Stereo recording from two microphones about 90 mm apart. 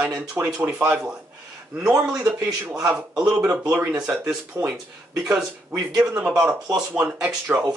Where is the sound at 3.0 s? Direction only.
10° right (ahead or behind).